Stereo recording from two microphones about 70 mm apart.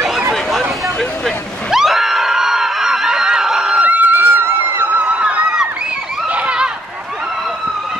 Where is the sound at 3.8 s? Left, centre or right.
Right.